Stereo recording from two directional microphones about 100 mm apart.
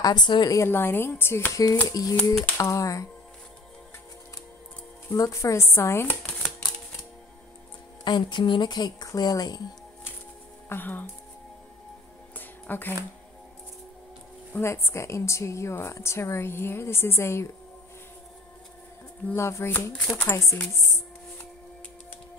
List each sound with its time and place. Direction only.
0.0 s speech: 45° left (ahead or behind)
0.7 s a woman's voice: 20° left (ahead or behind)
5.1 s a woman's voice: 35° left (ahead or behind)
8.0 s speech: 50° left (ahead or behind)
10.7 s a woman's voice: 20° left (ahead or behind)
12.4 s music: 20° left (ahead or behind)
14.6 s a woman's voice: 25° left (ahead or behind)
19.3 s a woman's voice: 25° left (ahead or behind)